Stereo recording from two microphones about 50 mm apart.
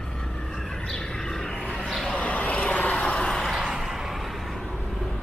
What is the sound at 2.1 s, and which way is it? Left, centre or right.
Vehicle, left.